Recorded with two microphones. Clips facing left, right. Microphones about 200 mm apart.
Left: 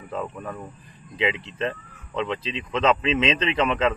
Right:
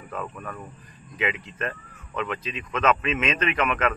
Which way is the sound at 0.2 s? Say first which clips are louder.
Left 3 dB; 20° left (ahead or behind).